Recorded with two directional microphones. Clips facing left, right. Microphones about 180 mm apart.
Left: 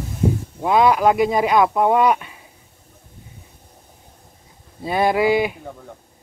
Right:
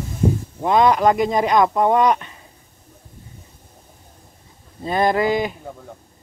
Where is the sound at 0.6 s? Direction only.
5° left (ahead or behind).